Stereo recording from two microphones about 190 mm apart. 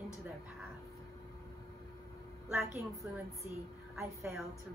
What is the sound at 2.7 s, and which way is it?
Speech, 15° right (ahead or behind).